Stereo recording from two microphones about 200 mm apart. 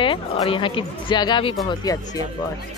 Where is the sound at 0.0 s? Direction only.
25° left (ahead or behind).